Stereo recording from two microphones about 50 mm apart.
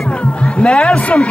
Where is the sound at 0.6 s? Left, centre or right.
Left.